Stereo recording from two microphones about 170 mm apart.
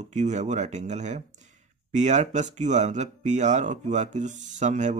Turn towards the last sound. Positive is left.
turn(degrees=-45)  # may be behind; listen again after turning